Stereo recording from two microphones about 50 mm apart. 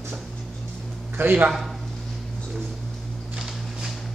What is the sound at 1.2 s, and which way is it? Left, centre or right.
Speech, right.